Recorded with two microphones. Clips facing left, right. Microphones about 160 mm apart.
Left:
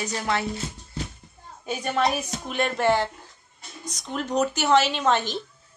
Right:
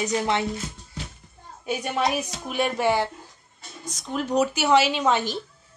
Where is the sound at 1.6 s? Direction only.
10° right (ahead or behind).